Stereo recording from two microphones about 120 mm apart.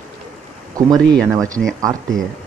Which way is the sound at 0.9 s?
5° left (ahead or behind).